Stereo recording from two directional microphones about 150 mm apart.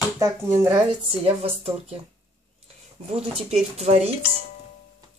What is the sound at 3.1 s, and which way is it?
Speech, 45° right (ahead or behind).